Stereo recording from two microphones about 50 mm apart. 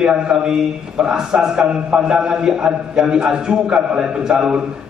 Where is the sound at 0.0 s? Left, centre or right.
Centre.